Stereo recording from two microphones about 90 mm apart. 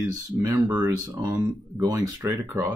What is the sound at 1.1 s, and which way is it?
Speech, 40° right (ahead or behind).